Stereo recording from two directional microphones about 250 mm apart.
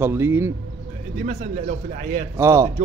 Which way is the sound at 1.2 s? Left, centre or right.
Right.